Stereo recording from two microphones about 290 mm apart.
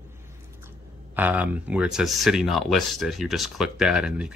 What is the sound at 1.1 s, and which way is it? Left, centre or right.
Speech, centre.